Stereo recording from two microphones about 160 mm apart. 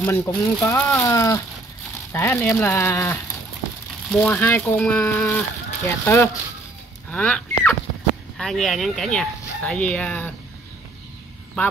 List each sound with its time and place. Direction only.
0.0 s speech: 15° left (ahead or behind)
7.1 s a sound: 5° left (ahead or behind)
8.4 s speech: 5° left (ahead or behind)